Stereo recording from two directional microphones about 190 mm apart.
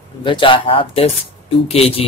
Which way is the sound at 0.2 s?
25° left (ahead or behind).